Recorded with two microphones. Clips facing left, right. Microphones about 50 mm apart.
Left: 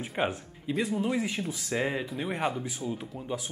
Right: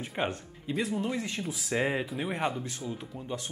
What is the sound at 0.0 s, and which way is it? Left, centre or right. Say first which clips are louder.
Speech: left 2 dB; centre.